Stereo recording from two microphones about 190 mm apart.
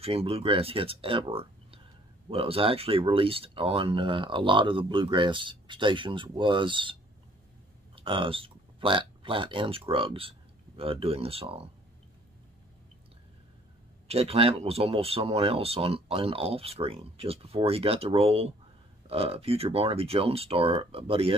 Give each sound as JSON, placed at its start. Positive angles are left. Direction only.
{"t": 0.0, "sound": "speech", "side_deg": -30}
{"t": 14.0, "sound": "speech", "side_deg": -30}